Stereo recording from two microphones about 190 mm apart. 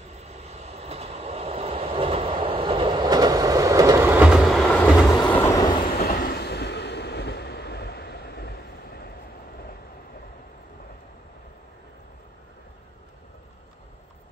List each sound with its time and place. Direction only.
0.1 s vehicle: 35° right (ahead or behind); by 5.0 s centre (ahead or behind)
5.3 s train: 15° left (ahead or behind)
5.9 s train: 50° left (ahead or behind)